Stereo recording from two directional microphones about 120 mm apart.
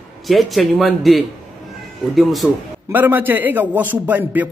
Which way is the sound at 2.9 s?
15° right (ahead or behind).